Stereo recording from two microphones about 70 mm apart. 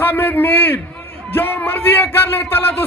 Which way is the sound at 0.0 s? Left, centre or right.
Left.